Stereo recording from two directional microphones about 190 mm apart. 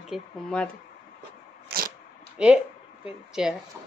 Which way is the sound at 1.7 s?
50° right (ahead or behind).